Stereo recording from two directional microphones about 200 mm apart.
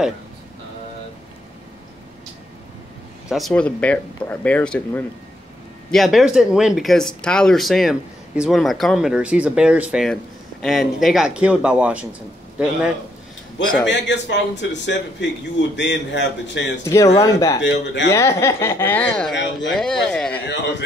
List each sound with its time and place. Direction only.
3.3 s speech: centre (ahead or behind)
13.8 s a man's voice: 60° left (ahead or behind)
16.8 s speech: 15° left (ahead or behind)
17.6 s a man's voice: 60° left (ahead or behind)
18.1 s speech: 15° left (ahead or behind)
19.3 s a man's voice: 65° left (ahead or behind)
19.7 s speech: centre (ahead or behind)